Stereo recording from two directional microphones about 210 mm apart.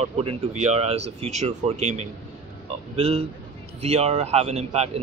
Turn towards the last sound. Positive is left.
turn(degrees=-30)  # may be behind; listen again after turning